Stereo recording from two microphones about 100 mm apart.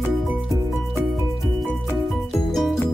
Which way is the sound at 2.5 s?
Centre (ahead or behind).